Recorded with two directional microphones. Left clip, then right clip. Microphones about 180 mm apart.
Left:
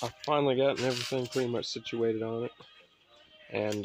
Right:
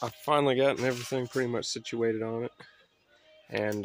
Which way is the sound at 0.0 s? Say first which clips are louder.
Right 2 dB; 20° right (ahead or behind).